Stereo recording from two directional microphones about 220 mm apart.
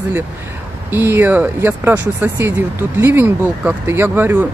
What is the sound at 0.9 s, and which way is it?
Speech, 10° right (ahead or behind).